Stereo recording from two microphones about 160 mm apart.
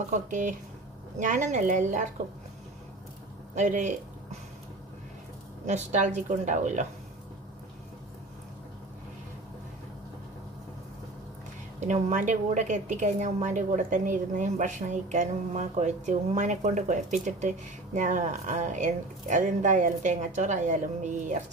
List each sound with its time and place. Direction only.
0.1 s a woman's voice: 50° right (ahead or behind)
3.5 s a woman's voice: 50° right (ahead or behind)
5.7 s a woman's voice: 50° right (ahead or behind)
11.8 s a woman's voice: 50° right (ahead or behind)